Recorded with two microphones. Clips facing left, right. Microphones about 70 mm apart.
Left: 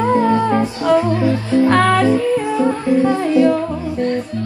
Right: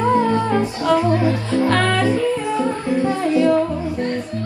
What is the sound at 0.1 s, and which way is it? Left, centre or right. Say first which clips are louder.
Music: left 2 dB; left.